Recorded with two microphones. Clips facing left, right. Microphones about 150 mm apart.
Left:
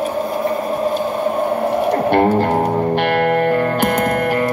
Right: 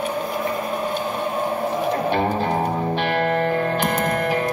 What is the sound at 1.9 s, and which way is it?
Music, 70° left (ahead or behind).